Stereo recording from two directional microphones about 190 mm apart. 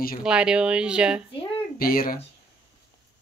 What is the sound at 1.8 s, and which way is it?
Speech, 50° left (ahead or behind).